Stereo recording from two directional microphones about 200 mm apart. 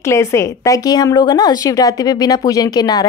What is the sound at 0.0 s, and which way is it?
Speech, 15° left (ahead or behind).